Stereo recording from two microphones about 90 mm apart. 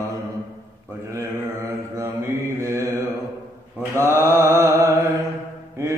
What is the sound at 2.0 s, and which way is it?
Mantra, 35° right (ahead or behind).